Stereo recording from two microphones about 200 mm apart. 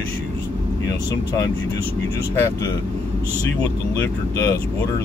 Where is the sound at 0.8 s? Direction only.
15° left (ahead or behind).